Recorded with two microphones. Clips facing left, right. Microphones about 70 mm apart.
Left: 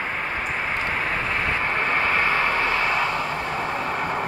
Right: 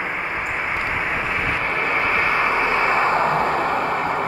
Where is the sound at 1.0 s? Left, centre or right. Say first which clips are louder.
Right 2 dB; centre; by 3.9 s right.